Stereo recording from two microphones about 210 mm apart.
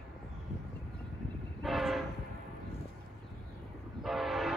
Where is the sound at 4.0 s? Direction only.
Centre (ahead or behind).